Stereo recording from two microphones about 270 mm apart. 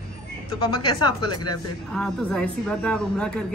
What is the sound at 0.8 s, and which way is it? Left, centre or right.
Speech, centre.